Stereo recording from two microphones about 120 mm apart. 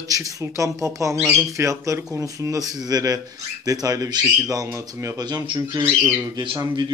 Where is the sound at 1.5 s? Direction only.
25° right (ahead or behind).